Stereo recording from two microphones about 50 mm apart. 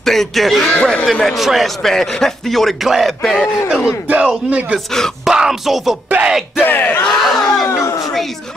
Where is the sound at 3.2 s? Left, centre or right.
Centre.